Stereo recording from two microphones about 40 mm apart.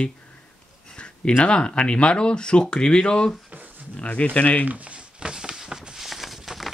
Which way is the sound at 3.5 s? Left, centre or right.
Right.